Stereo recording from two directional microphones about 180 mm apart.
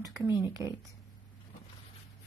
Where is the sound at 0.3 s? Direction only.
15° right (ahead or behind).